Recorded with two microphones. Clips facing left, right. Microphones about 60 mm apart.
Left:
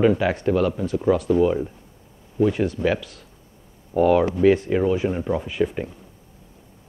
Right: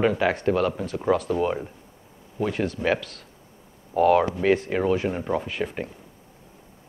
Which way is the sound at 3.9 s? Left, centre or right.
Centre.